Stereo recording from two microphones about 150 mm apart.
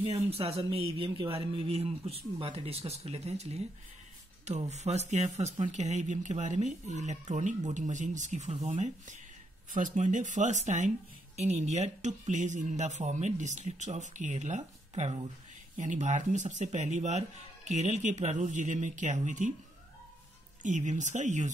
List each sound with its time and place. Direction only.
0.0 s speech: 40° right (ahead or behind)
20.6 s speech: 55° right (ahead or behind)